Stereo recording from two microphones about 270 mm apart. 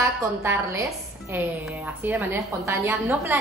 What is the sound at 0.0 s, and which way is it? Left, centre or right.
A woman's voice, centre.